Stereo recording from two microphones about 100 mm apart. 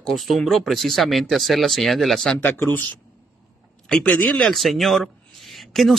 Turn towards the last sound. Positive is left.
turn(degrees=0)  # may be behind; listen again after turning